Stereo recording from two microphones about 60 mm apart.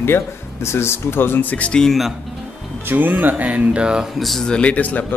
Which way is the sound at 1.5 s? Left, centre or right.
Left.